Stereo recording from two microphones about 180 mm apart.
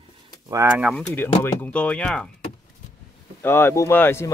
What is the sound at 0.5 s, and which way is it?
Speech, 10° right (ahead or behind).